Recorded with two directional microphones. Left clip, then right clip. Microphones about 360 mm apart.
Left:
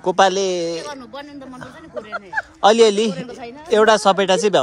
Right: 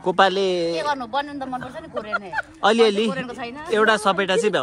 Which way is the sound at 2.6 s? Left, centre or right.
Centre.